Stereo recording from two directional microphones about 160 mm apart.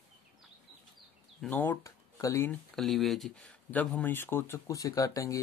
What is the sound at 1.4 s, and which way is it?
Speech, 10° left (ahead or behind).